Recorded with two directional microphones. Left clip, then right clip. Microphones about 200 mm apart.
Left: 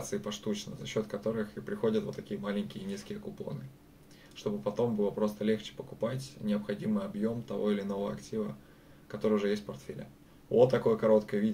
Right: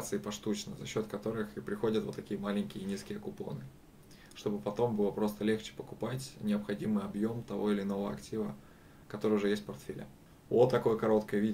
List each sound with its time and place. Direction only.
0.1 s speech: 20° right (ahead or behind)
4.4 s speech: 20° right (ahead or behind)